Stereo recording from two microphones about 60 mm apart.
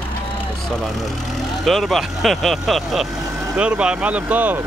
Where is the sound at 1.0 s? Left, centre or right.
Centre.